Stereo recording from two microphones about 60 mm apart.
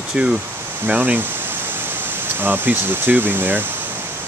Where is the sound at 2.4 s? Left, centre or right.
Right.